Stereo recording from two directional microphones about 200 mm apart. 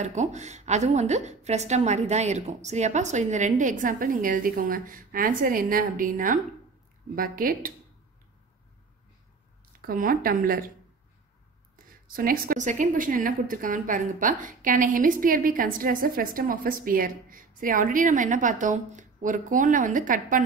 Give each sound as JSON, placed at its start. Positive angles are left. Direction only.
{"t": 0.0, "sound": "a woman's voice", "side_deg": -35}
{"t": 9.8, "sound": "a woman's voice", "side_deg": -45}
{"t": 12.1, "sound": "a woman's voice", "side_deg": -45}